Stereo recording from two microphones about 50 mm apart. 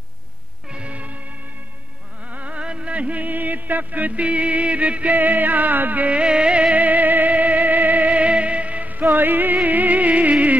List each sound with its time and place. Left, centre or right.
0.7 s music: right
2.2 s music: right
6.8 s music: right